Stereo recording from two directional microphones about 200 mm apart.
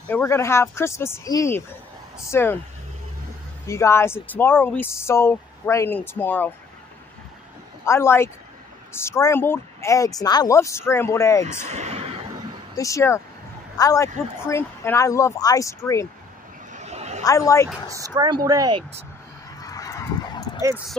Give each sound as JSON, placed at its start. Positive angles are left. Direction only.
{"t": 0.1, "sound": "speech", "side_deg": 15}
{"t": 3.6, "sound": "speech", "side_deg": 15}
{"t": 7.8, "sound": "speech", "side_deg": 15}
{"t": 11.7, "sound": "a sound", "side_deg": -30}
{"t": 12.7, "sound": "speech", "side_deg": 15}
{"t": 16.7, "sound": "a sound", "side_deg": -35}
{"t": 17.2, "sound": "speech", "side_deg": 15}
{"t": 17.8, "sound": "speech", "side_deg": -15}
{"t": 19.6, "sound": "dog", "side_deg": 15}